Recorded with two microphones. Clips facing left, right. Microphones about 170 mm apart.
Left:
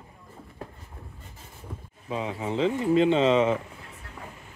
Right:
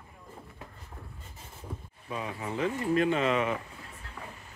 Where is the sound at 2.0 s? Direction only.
20° left (ahead or behind).